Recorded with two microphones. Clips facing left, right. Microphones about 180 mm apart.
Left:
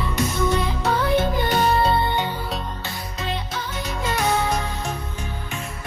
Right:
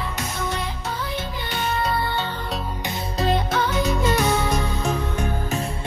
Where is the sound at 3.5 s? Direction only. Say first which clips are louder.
Right 8 dB; 70° right (ahead or behind).